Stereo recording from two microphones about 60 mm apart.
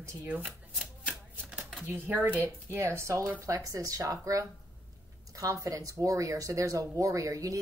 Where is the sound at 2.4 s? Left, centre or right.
Right.